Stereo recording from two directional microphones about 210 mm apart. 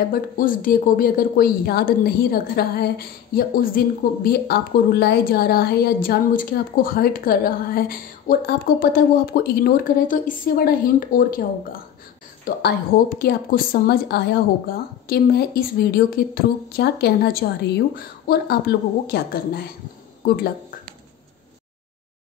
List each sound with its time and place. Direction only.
0.0 s speech: 40° left (ahead or behind)